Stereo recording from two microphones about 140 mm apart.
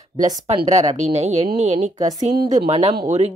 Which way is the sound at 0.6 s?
55° right (ahead or behind).